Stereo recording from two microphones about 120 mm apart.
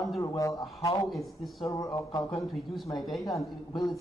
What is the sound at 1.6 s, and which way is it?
A man's voice, 25° left (ahead or behind).